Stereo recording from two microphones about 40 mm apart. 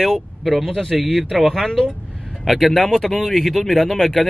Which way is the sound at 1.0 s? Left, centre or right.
Centre.